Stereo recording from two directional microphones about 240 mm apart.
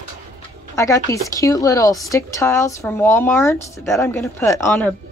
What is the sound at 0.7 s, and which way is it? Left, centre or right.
Speech, centre.